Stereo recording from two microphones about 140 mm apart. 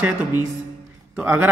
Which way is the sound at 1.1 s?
10° right (ahead or behind).